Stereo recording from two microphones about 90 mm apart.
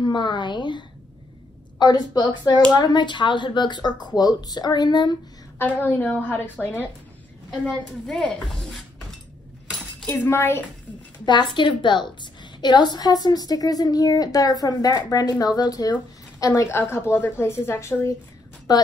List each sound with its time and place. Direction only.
0.0 s a woman's voice: 60° left (ahead or behind)
5.6 s a woman's voice: 25° left (ahead or behind)
10.0 s a woman's voice: 25° left (ahead or behind)
11.2 s a woman's voice: 60° left (ahead or behind); by 16.6 s 40° left (ahead or behind)
16.7 s a woman's voice: 25° left (ahead or behind)
18.7 s a woman's voice: 50° left (ahead or behind)